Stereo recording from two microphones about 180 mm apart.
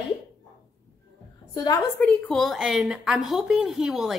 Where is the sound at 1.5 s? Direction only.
20° left (ahead or behind).